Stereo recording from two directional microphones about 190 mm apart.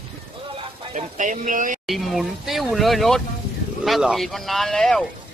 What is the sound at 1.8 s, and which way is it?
Speech, centre (ahead or behind).